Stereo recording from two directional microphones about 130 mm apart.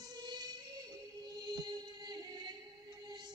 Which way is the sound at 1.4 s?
30° right (ahead or behind).